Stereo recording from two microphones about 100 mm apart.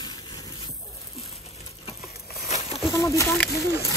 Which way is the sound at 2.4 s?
35° right (ahead or behind).